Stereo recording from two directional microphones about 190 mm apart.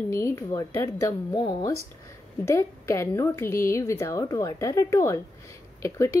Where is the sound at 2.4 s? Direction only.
15° left (ahead or behind).